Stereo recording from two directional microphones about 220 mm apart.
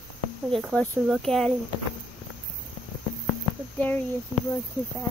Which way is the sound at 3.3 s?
5° left (ahead or behind).